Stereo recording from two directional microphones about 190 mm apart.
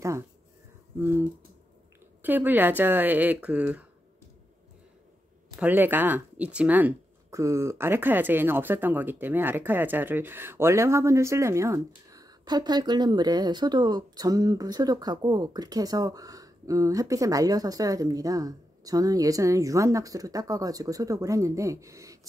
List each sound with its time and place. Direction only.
0.9 s speech: 10° right (ahead or behind)
2.2 s speech: 10° right (ahead or behind)
5.6 s speech: 10° right (ahead or behind)